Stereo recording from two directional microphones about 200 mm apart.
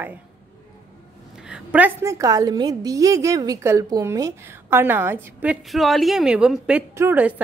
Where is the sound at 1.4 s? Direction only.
5° right (ahead or behind).